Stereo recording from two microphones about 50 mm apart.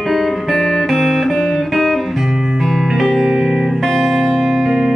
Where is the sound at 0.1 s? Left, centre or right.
Centre.